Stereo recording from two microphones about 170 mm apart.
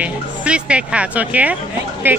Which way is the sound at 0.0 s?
5° right (ahead or behind).